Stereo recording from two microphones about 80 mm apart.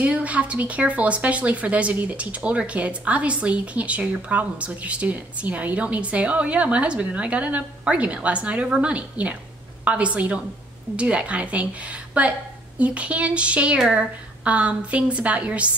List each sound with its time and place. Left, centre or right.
0.0 s a woman's voice: centre